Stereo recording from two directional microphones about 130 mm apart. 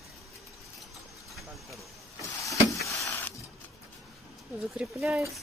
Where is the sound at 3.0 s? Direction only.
25° left (ahead or behind).